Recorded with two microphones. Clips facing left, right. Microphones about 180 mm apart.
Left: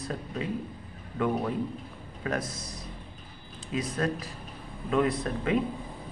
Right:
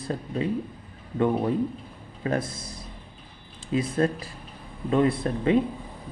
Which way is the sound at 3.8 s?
30° right (ahead or behind).